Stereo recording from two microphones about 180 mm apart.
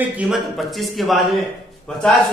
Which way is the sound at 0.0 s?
5° right (ahead or behind).